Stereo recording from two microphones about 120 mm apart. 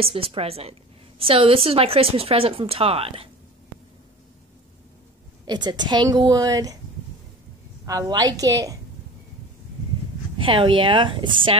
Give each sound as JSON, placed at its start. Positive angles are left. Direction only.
{"t": 0.0, "sound": "a woman's voice", "side_deg": -50}
{"t": 5.4, "sound": "a woman's voice", "side_deg": -40}
{"t": 7.8, "sound": "a woman's voice", "side_deg": -30}
{"t": 10.3, "sound": "a woman's voice", "side_deg": -45}